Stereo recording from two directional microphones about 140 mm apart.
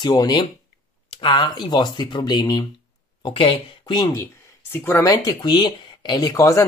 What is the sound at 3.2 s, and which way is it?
Speech, 40° left (ahead or behind).